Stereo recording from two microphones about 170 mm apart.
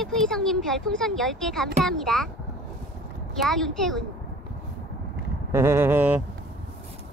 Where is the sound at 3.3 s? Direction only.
Centre (ahead or behind).